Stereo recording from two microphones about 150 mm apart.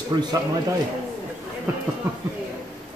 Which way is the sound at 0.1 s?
30° right (ahead or behind).